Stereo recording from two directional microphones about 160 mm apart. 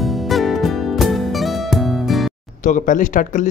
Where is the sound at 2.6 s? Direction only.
50° left (ahead or behind).